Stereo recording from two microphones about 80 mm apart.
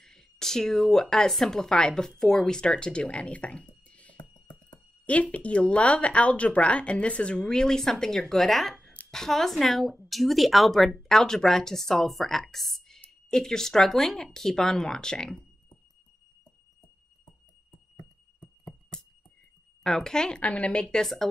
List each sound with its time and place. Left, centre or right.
0.0 s a sound: centre
1.1 s speech: centre
4.2 s music: left
5.0 s speech: centre
18.7 s a sound: centre
19.8 s speech: centre